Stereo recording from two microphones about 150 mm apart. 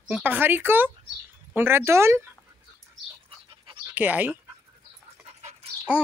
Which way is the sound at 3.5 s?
35° right (ahead or behind).